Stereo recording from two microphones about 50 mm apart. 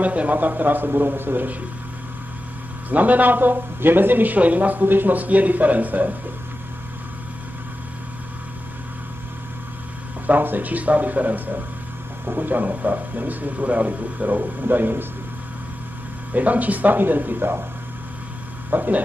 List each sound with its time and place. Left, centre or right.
0.0 s speech: right
2.9 s speech: right
10.2 s speech: right
16.3 s speech: right
18.7 s speech: right